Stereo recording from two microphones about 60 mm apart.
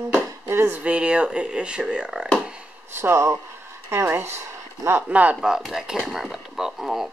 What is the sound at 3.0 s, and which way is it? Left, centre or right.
Speech, right.